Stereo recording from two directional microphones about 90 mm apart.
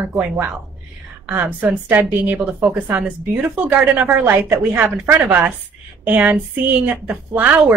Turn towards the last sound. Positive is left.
turn(degrees=-15)  # may be behind; listen again after turning